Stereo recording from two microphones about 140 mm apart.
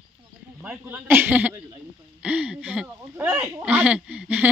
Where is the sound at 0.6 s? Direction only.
15° right (ahead or behind).